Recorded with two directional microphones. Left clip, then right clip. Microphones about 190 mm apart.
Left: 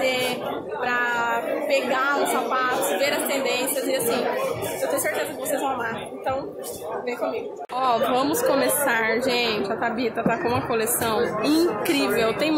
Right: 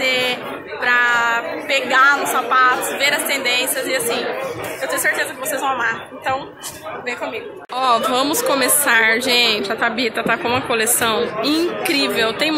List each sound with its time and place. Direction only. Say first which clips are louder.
0.0 s a sound: right 5 dB; centre (ahead or behind)
0.8 s speech: right 8 dB; centre (ahead or behind)
5.6 s a woman's voice: right 6 dB; centre (ahead or behind)
7.7 s a woman's voice: right 5 dB; centre (ahead or behind)